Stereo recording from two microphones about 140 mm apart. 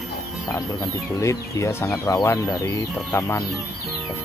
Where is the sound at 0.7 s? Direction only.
20° left (ahead or behind).